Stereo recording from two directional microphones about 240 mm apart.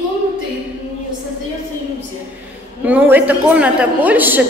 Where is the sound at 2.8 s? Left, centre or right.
Centre.